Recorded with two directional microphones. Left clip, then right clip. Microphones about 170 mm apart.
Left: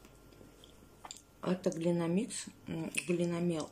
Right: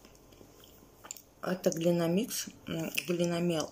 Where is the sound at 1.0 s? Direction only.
15° left (ahead or behind).